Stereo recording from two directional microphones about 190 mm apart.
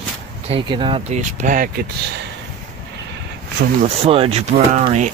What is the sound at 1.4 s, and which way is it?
Speech, 45° right (ahead or behind).